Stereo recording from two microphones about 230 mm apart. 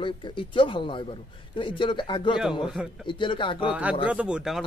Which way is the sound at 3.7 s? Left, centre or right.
Centre.